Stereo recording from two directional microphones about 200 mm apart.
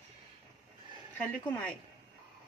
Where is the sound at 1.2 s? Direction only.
5° left (ahead or behind).